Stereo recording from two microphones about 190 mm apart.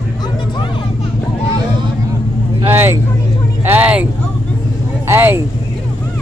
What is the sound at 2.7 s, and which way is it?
Vehicle, 10° right (ahead or behind).